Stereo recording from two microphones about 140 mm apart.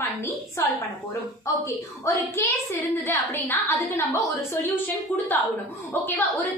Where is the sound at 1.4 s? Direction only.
20° left (ahead or behind).